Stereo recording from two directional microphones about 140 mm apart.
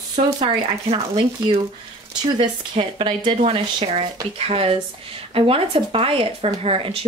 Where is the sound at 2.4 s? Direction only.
40° right (ahead or behind).